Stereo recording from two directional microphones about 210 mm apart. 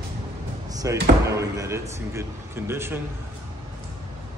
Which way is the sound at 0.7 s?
15° right (ahead or behind).